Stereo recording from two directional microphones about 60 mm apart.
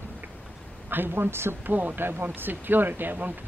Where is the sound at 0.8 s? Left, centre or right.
Right.